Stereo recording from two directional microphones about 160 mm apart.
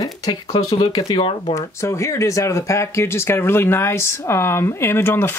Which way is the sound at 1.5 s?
20° left (ahead or behind).